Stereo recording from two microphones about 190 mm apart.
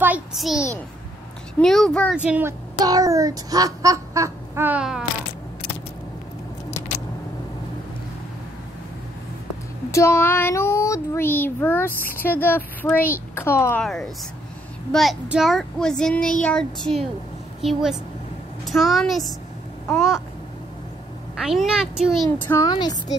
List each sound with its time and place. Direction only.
0.0 s a child's voice: 5° right (ahead or behind)
1.6 s a child's voice: centre (ahead or behind)
2.1 s speech: 5° right (ahead or behind)
2.8 s a child's voice: 20° right (ahead or behind)
9.8 s child singing: 15° left (ahead or behind)
13.3 s speech: 15° left (ahead or behind)
13.8 s a child's voice: centre (ahead or behind)
21.4 s a child's voice: 5° right (ahead or behind)
22.4 s child singing: 10° left (ahead or behind)
22.7 s a woman's voice: 20° left (ahead or behind)